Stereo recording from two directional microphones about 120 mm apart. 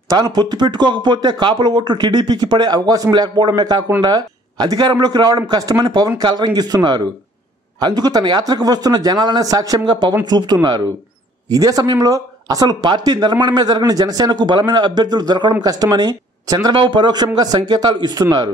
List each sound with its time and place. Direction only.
0.1 s speech: 35° right (ahead or behind)